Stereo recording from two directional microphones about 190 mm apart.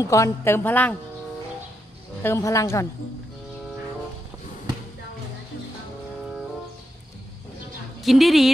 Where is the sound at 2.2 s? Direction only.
15° left (ahead or behind).